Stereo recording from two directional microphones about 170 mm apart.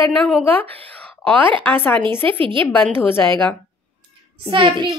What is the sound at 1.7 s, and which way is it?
Speech, 10° left (ahead or behind).